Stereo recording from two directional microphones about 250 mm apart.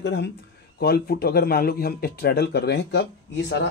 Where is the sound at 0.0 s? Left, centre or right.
Left.